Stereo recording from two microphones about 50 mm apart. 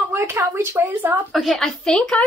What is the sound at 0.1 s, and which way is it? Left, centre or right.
Speech, right.